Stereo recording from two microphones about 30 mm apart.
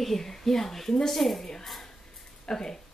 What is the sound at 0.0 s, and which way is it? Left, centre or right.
Speech, centre.